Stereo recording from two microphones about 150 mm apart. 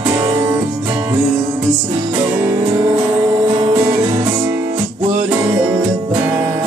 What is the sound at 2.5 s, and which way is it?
Music, 30° right (ahead or behind).